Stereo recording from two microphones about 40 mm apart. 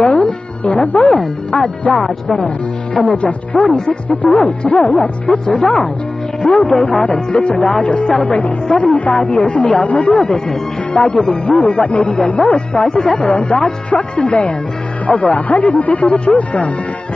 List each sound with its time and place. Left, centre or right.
0.0 s speech: left
1.6 s speech: left